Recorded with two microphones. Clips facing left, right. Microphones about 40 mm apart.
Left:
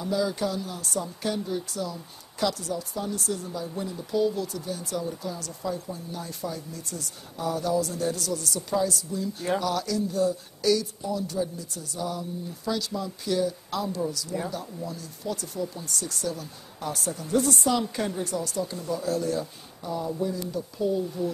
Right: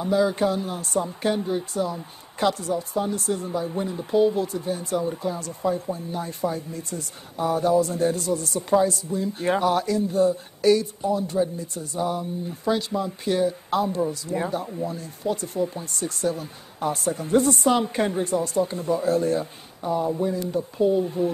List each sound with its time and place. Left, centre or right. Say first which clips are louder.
0.0 s speech: right 6 dB; right